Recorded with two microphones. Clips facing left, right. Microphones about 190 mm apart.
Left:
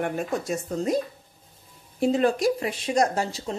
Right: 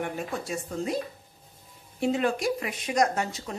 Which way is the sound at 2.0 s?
35° left (ahead or behind).